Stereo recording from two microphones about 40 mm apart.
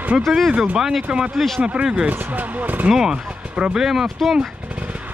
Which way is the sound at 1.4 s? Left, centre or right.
Centre.